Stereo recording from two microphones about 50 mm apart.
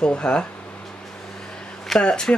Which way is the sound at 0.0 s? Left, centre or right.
Left.